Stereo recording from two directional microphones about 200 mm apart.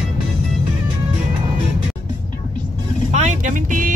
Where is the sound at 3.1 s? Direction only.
35° right (ahead or behind).